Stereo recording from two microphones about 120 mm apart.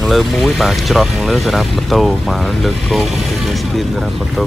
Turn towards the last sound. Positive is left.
turn(degrees=0)  # may be behind; listen again after turning